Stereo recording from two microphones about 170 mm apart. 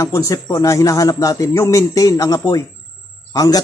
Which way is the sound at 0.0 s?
15° left (ahead or behind).